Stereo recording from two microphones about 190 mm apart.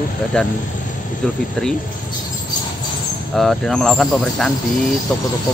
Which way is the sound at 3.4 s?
Centre (ahead or behind).